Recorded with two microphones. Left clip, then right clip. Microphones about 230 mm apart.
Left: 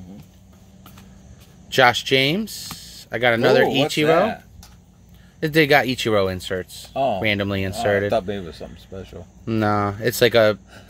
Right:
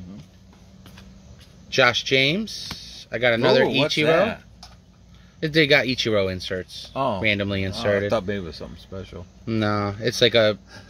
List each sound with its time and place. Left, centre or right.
1.8 s speech: centre
5.4 s speech: centre
6.9 s speech: right
7.2 s speech: centre
8.1 s speech: right
9.4 s speech: centre